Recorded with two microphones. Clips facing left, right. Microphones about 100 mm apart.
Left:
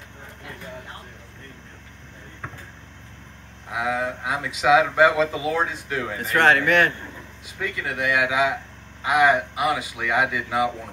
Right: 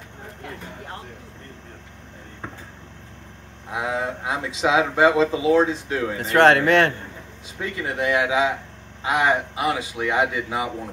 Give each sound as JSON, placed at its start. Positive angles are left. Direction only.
{"t": 3.7, "sound": "speech", "side_deg": -25}